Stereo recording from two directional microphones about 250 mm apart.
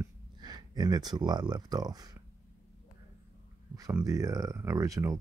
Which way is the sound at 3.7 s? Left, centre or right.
Centre.